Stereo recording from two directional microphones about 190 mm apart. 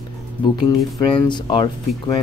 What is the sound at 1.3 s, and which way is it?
Speech, 25° left (ahead or behind).